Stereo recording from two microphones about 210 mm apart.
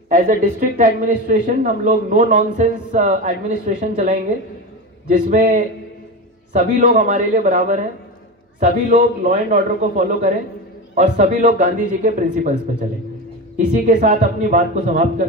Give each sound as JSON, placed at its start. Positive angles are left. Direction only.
{"t": 0.1, "sound": "a man's voice", "side_deg": -40}
{"t": 13.6, "sound": "a man's voice", "side_deg": -40}